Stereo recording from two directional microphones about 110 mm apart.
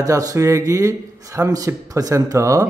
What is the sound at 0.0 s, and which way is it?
A man's voice, 30° right (ahead or behind).